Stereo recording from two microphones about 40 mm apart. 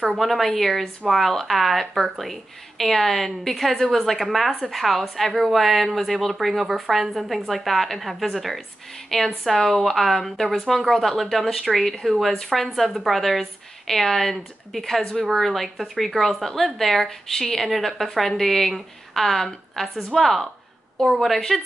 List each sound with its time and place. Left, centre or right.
0.1 s a woman's voice: centre